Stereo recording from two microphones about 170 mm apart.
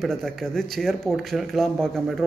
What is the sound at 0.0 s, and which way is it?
A man's voice, centre (ahead or behind).